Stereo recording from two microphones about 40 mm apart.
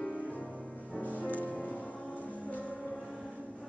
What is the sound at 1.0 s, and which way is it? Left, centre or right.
Music, left.